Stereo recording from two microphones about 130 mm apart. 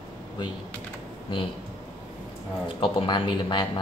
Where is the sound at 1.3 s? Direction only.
40° left (ahead or behind).